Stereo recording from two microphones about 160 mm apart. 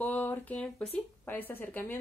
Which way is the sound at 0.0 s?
10° left (ahead or behind).